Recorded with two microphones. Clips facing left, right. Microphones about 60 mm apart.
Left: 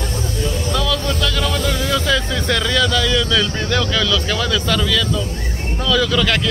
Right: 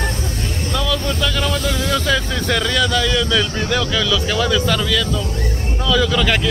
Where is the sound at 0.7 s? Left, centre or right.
Centre.